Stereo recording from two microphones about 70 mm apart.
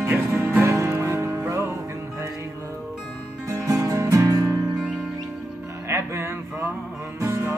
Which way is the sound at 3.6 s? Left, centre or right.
Right.